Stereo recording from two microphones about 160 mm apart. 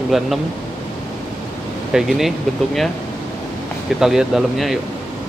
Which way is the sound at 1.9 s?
Centre (ahead or behind).